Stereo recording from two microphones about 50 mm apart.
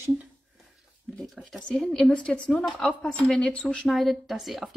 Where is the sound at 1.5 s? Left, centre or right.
Centre.